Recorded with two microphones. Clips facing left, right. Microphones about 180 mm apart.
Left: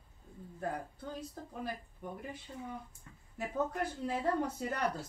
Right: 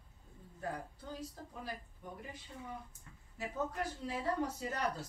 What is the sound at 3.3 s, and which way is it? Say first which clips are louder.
Speech: left 4 dB; 55° left (ahead or behind).